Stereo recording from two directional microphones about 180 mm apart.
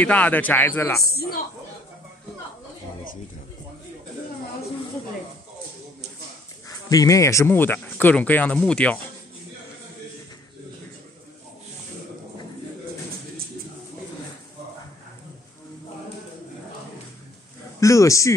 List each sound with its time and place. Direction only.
0.0 s speech: 10° left (ahead or behind)
6.9 s speech: 20° left (ahead or behind)
17.7 s speech: 15° left (ahead or behind)